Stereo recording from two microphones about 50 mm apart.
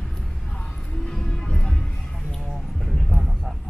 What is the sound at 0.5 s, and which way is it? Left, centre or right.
Music, centre.